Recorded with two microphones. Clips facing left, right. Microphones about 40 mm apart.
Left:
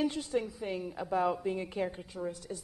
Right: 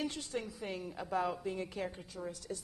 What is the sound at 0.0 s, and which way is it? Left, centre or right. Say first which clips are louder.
Speech: left 7 dB; centre.